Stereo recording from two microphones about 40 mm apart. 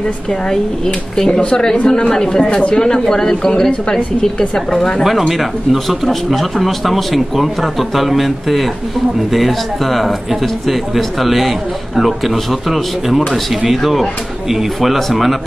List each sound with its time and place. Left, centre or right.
1.1 s a woman's voice: centre
5.4 s speech: centre